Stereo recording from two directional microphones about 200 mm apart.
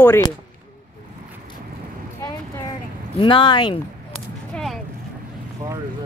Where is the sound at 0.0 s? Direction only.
10° left (ahead or behind).